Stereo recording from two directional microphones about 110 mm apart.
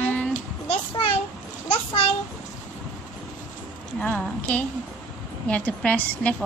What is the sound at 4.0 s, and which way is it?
A woman's voice, 15° left (ahead or behind).